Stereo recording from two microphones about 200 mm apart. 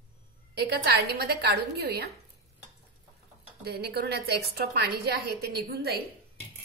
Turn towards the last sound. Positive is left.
turn(degrees=-50)  # may be behind; listen again after turning